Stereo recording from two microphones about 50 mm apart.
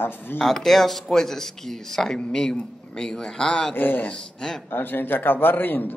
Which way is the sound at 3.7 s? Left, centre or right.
Left.